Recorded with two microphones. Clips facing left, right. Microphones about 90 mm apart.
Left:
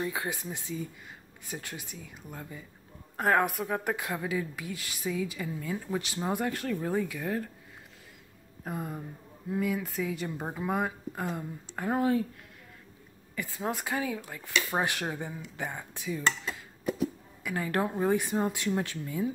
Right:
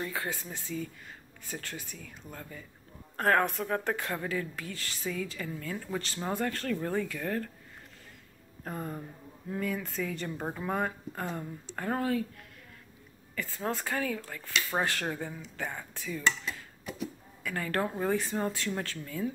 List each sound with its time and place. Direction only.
0.0 s speech: 15° left (ahead or behind)
8.6 s speech: 5° left (ahead or behind)
13.4 s speech: 15° left (ahead or behind)
17.4 s speech: 15° left (ahead or behind)